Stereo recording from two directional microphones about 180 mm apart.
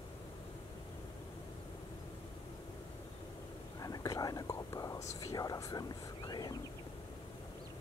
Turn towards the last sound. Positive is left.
turn(degrees=20)  # may be behind; listen again after turning